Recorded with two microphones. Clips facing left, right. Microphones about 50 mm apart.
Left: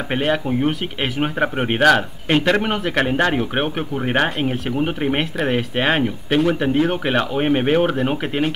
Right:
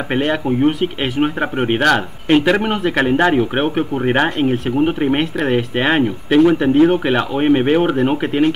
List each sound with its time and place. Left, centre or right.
0.1 s speech: centre